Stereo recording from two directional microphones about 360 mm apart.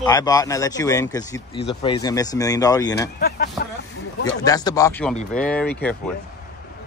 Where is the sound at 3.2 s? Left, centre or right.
Left.